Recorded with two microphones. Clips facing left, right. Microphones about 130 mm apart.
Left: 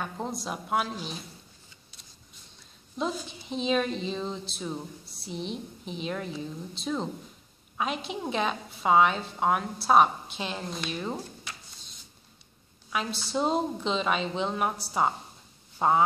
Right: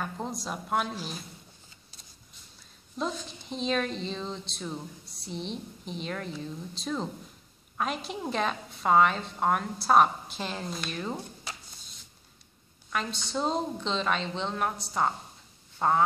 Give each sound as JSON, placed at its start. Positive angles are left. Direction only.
{"t": 0.0, "sound": "a woman's voice", "side_deg": 0}
{"t": 3.0, "sound": "a woman's voice", "side_deg": 5}
{"t": 11.5, "sound": "a sound", "side_deg": -35}
{"t": 12.9, "sound": "a woman's voice", "side_deg": 5}